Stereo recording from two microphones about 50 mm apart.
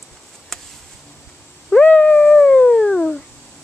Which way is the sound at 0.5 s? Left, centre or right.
Centre.